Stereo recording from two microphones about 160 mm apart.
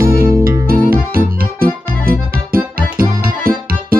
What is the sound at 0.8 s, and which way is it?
Music, 65° right (ahead or behind).